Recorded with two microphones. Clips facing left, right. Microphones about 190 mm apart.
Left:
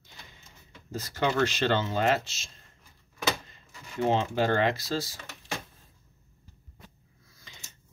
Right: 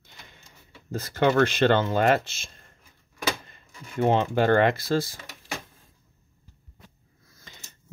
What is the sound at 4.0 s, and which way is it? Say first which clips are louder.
Speech: right 4 dB; 55° right (ahead or behind).